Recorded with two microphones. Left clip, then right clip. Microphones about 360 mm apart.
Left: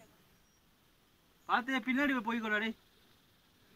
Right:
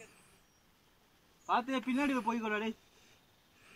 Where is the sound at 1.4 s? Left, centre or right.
Centre.